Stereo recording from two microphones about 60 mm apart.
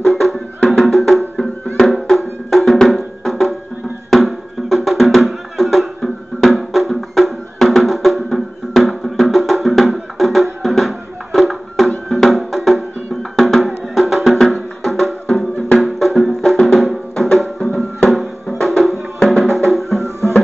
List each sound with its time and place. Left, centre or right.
0.0 s music: centre
20.0 s music: right